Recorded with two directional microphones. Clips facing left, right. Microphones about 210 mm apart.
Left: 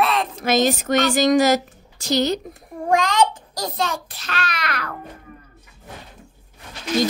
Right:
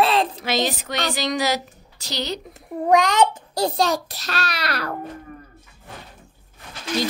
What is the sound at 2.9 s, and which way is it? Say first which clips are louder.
A child's voice: right 1 dB; 20° right (ahead or behind).